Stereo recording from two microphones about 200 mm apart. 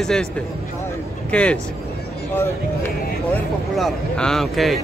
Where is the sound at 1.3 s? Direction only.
5° left (ahead or behind).